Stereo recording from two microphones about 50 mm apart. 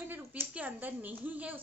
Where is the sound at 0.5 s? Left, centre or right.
Right.